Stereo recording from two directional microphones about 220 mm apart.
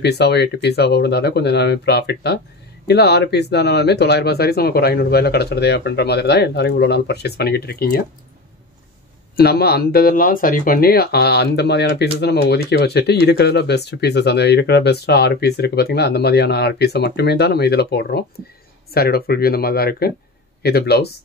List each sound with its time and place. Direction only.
0.0 s speech: 50° left (ahead or behind)
9.4 s speech: 45° left (ahead or behind)